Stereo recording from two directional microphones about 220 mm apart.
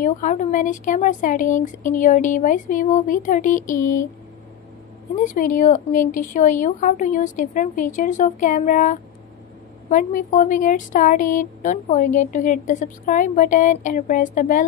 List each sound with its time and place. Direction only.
0.0 s speech: 35° left (ahead or behind)
5.1 s speech: 35° left (ahead or behind)